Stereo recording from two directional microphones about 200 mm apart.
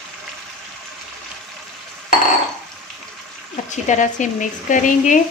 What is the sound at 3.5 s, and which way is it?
Speech, 35° left (ahead or behind).